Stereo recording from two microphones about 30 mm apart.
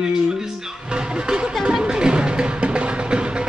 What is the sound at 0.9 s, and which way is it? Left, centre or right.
Speech, right.